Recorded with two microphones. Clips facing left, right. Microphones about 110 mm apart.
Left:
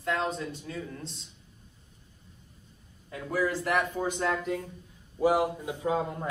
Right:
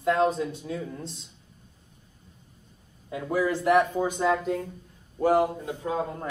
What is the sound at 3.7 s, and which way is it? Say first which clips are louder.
Speech: right 6 dB; 5° right (ahead or behind).